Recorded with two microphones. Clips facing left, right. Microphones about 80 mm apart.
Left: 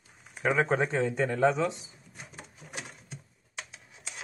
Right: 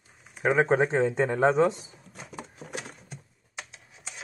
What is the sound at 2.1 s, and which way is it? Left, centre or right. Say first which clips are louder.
Patter: right 6 dB; right.